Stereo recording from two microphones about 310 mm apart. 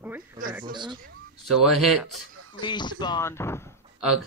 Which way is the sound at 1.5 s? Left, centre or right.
Centre.